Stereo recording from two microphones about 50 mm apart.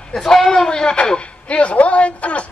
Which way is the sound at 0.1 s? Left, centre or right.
Centre.